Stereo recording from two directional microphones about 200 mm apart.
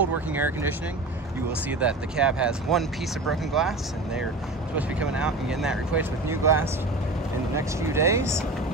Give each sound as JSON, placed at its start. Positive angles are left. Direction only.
{"t": 0.3, "sound": "speech", "side_deg": -10}
{"t": 4.7, "sound": "speech", "side_deg": -5}